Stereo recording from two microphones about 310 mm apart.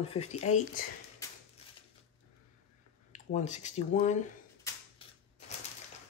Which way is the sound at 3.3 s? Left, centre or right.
Left.